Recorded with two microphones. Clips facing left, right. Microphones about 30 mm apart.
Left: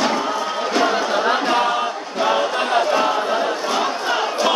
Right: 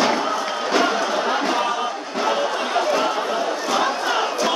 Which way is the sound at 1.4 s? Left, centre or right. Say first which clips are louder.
Left 3 dB; left.